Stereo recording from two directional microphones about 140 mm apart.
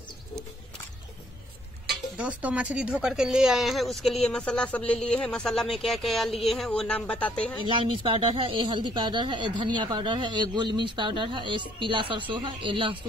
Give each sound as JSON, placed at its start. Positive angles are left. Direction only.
{"t": 2.1, "sound": "speech", "side_deg": -10}
{"t": 7.6, "sound": "speech", "side_deg": -35}